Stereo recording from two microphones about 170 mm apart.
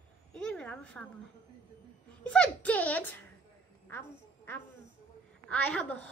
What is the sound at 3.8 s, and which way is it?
Quack, 15° left (ahead or behind).